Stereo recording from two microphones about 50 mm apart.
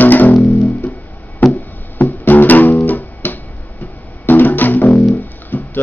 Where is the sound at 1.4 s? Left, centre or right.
Left.